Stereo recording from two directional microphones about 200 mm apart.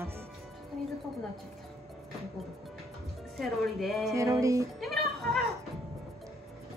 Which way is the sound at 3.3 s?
Centre (ahead or behind).